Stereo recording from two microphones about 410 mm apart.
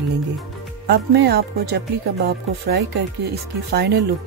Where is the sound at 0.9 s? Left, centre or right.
Right.